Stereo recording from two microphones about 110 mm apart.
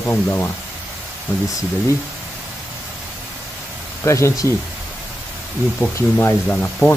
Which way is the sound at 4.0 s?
30° left (ahead or behind).